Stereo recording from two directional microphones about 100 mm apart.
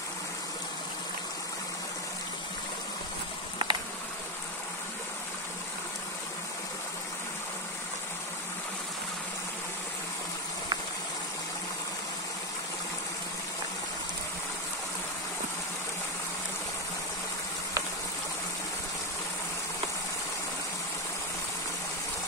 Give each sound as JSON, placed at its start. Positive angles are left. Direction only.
{"t": 3.6, "sound": "insect", "side_deg": -50}